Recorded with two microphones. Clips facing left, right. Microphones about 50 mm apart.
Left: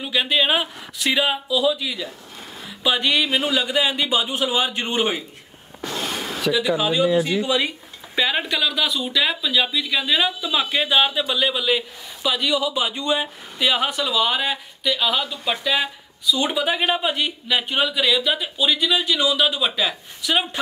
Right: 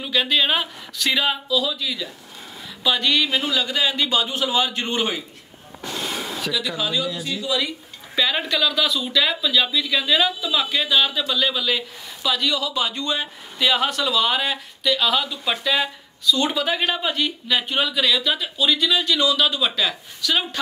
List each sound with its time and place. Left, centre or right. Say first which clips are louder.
0.0 s speech: even; centre
6.5 s speech: left 5 dB; centre; by 7.7 s left
8.2 s speech: even; centre